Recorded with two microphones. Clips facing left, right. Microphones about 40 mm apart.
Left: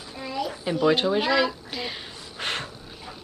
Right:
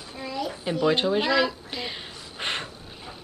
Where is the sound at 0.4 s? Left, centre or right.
Centre.